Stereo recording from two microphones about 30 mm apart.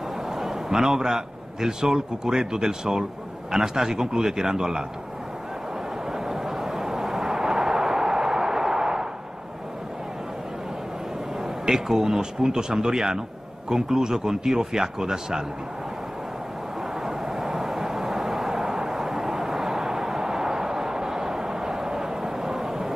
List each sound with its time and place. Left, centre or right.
0.3 s a man's voice: centre
6.1 s a sound: centre
11.4 s speech: centre
17.0 s vehicle: centre